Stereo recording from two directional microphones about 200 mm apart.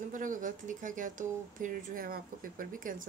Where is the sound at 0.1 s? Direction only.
40° right (ahead or behind).